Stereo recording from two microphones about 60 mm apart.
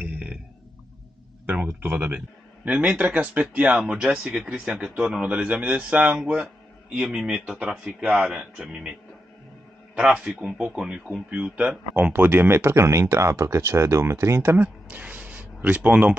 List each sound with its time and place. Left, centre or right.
0.0 s burping: centre
1.4 s a sound: right
1.8 s a man's voice: right
3.8 s speech: centre
9.9 s a man's voice: centre
12.1 s speech: right
14.9 s a sound: right